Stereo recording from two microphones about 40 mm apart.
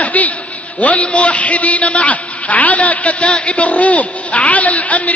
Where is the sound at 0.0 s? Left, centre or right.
Left.